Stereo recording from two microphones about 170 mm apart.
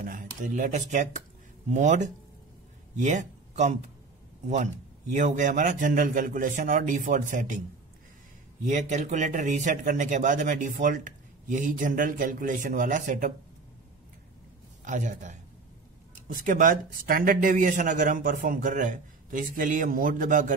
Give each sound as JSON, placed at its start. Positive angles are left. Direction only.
{"t": 0.0, "sound": "a man's voice", "side_deg": -50}
{"t": 5.1, "sound": "speech", "side_deg": -45}
{"t": 8.6, "sound": "speech", "side_deg": -45}
{"t": 14.9, "sound": "speech", "side_deg": -45}